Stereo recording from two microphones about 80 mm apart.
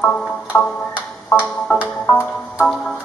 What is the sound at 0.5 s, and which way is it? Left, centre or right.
Music, centre.